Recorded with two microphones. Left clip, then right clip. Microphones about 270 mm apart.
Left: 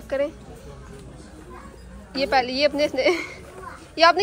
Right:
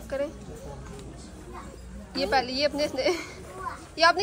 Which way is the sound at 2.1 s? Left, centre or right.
Centre.